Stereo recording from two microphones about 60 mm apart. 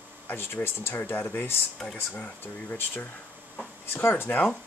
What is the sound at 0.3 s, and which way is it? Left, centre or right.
Speech, left.